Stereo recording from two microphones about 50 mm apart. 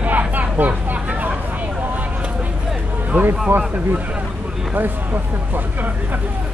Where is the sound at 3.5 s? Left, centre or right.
Right.